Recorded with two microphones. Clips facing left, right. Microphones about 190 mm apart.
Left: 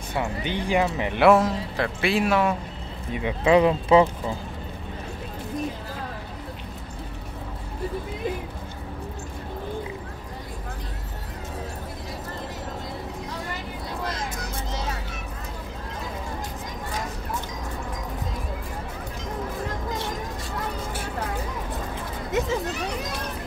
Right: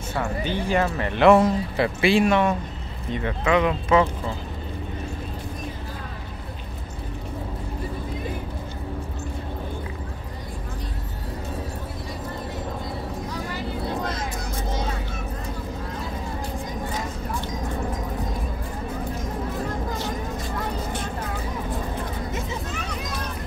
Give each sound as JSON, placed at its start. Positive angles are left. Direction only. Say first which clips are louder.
{"t": 0.1, "sound": "speech", "louder": "right 1 dB", "side_deg": 15}
{"t": 1.3, "sound": "a man's voice", "louder": "right 2 dB", "side_deg": 0}
{"t": 3.4, "sound": "speech", "louder": "left 3 dB", "side_deg": 30}